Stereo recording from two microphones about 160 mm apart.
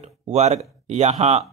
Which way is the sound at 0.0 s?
40° right (ahead or behind).